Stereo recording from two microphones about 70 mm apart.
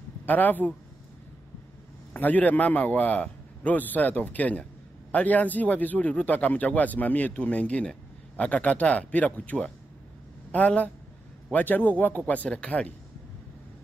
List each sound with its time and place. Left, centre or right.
0.2 s speech: left
2.1 s speech: left